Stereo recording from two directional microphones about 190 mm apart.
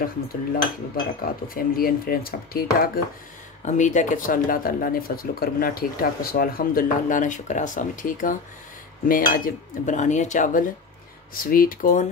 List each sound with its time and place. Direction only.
0.0 s speech: 50° left (ahead or behind)
3.6 s speech: 40° left (ahead or behind)
9.0 s cutlery: 45° left (ahead or behind)
11.4 s speech: 50° left (ahead or behind)